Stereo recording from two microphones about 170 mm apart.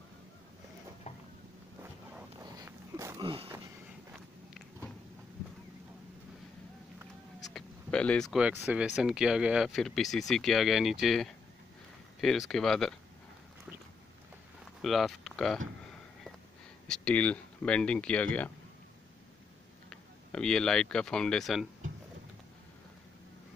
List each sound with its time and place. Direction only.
1.8 s a sound: 15° right (ahead or behind)
3.2 s a sound: 30° right (ahead or behind)
7.5 s speech: 5° left (ahead or behind)
14.8 s speech: centre (ahead or behind)
16.8 s speech: 5° left (ahead or behind)
19.9 s speech: 5° left (ahead or behind)